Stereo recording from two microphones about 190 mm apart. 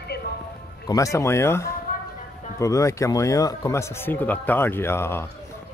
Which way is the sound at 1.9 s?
50° left (ahead or behind).